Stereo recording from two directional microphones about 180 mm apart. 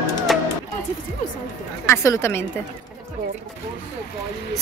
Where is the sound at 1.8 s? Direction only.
15° left (ahead or behind).